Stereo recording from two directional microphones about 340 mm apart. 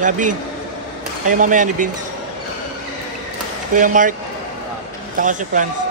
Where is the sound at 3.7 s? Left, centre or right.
Right.